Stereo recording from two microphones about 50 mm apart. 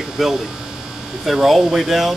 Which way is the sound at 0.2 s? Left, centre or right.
Centre.